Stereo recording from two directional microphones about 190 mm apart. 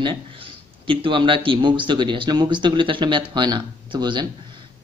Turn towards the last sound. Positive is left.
turn(degrees=-25)  # may be behind; listen again after turning